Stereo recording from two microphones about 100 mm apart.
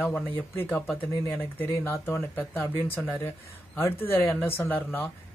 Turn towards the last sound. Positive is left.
turn(degrees=20)  # may be behind; listen again after turning